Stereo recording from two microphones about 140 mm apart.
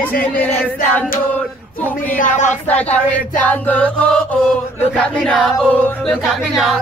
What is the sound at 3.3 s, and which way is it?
Chant, 10° left (ahead or behind).